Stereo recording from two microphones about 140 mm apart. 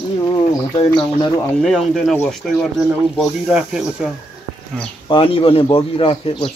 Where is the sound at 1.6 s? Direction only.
Centre (ahead or behind).